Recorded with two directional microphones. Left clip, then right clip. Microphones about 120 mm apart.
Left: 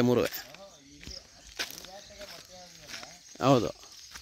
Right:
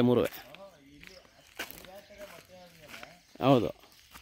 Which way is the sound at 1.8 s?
5° right (ahead or behind).